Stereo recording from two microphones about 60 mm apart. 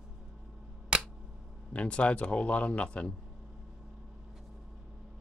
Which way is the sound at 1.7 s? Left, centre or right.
Centre.